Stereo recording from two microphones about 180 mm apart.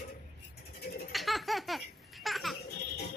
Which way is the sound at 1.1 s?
Centre (ahead or behind).